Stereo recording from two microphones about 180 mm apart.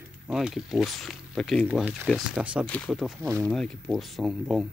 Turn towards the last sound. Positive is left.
turn(degrees=0)  # may be behind; listen again after turning